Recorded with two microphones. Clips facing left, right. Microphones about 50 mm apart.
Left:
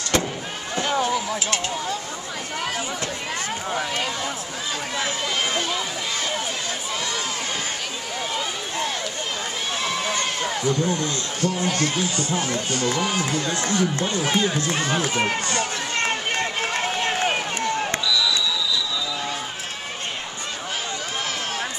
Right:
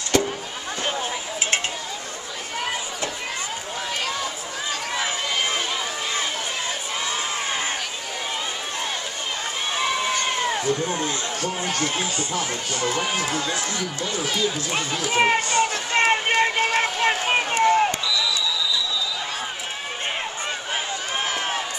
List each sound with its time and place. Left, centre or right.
4.9 s run: centre
9.8 s run: centre
10.5 s speech: right
11.8 s speech: right
13.6 s speech: left
15.0 s run: right